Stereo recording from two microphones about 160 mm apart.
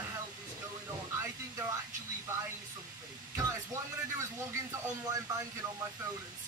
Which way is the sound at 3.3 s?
20° right (ahead or behind).